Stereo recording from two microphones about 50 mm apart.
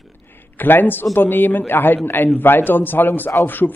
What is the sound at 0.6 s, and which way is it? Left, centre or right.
Speech, left.